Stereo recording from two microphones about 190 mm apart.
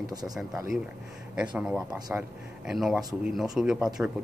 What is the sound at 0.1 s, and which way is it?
Speech, 20° right (ahead or behind).